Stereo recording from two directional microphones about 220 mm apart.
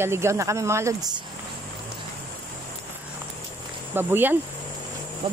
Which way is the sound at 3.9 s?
10° right (ahead or behind).